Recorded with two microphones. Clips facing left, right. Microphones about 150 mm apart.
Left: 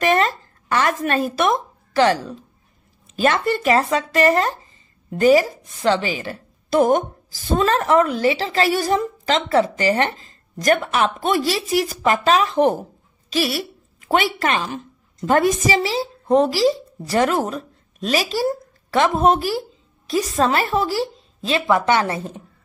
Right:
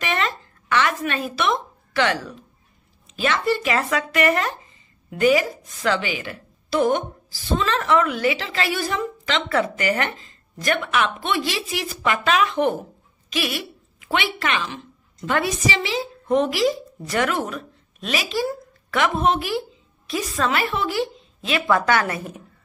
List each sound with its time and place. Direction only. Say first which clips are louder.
0.0 s a sound: left 7 dB; 40° left (ahead or behind)
3.2 s a woman's voice: left 3 dB; 50° left (ahead or behind)
3.7 s a woman's voice: left 4 dB; 30° left (ahead or behind)
21.6 s speech: left 2 dB; 20° left (ahead or behind)